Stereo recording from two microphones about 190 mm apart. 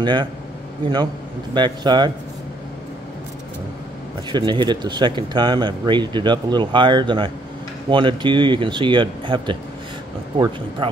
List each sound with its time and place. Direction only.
0.0 s speech: 25° right (ahead or behind)
1.5 s speech: 25° right (ahead or behind)
4.3 s speech: 25° right (ahead or behind)
10.8 s speech: 25° right (ahead or behind)